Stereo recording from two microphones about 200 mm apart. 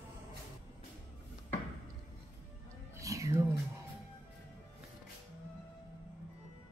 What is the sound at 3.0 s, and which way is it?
Music, 15° right (ahead or behind).